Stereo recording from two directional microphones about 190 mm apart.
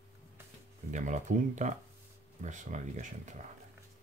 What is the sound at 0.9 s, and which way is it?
Speech, 40° right (ahead or behind).